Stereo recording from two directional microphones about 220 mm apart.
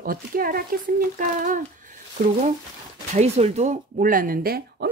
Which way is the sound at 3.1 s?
30° right (ahead or behind).